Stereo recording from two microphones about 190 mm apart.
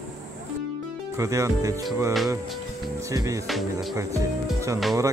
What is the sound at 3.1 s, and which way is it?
Speech, 15° right (ahead or behind).